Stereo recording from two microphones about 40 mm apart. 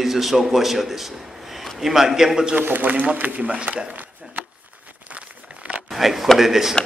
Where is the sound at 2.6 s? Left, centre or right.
Right.